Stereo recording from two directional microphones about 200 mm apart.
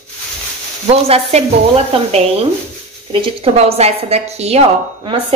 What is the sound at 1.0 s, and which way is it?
A woman's voice, 30° right (ahead or behind).